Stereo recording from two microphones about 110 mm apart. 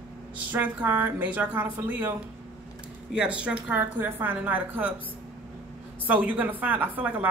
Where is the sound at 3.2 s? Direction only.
10° right (ahead or behind).